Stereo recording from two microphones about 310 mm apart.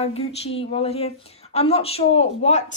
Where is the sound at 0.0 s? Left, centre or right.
Centre.